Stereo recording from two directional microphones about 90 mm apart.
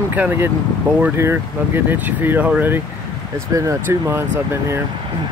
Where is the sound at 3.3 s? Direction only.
40° right (ahead or behind).